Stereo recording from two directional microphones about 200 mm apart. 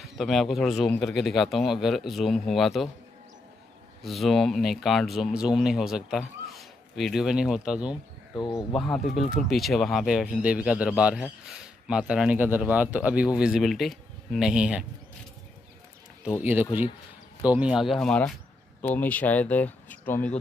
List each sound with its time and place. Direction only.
0.0 s speech: centre (ahead or behind)
4.0 s speech: centre (ahead or behind)
7.9 s speech: 20° left (ahead or behind)
8.7 s speech: 5° left (ahead or behind)
16.3 s speech: 10° right (ahead or behind); by 20.3 s 10° left (ahead or behind)